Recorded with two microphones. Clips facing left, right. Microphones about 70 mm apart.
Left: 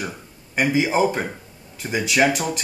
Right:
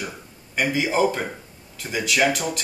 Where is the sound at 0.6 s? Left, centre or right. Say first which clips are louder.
Left 2 dB; left.